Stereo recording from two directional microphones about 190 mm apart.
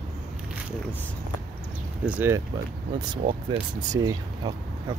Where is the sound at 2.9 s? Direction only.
25° right (ahead or behind).